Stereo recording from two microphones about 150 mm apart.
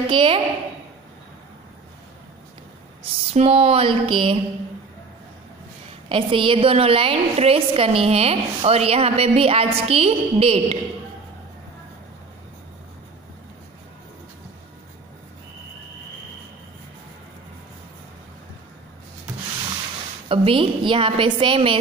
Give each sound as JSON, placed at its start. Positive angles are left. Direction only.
{"t": 0.0, "sound": "a woman's voice", "side_deg": -35}
{"t": 3.0, "sound": "speech", "side_deg": -45}
{"t": 6.0, "sound": "a woman's voice", "side_deg": -35}
{"t": 20.2, "sound": "a woman's voice", "side_deg": -35}